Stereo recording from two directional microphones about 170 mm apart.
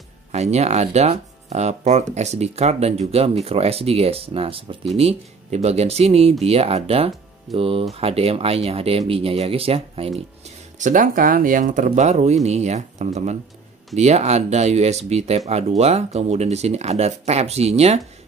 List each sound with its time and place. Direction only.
0.3 s speech: 40° right (ahead or behind)
10.8 s speech: 50° right (ahead or behind)